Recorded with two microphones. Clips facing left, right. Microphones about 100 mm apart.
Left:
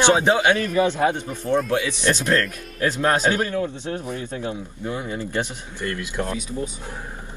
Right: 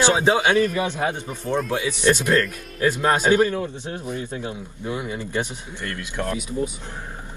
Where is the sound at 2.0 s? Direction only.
15° right (ahead or behind).